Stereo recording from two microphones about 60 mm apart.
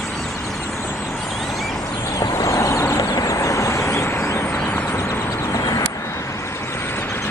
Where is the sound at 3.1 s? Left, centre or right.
Left.